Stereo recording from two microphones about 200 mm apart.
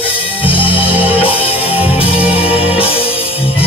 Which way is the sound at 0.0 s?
25° left (ahead or behind).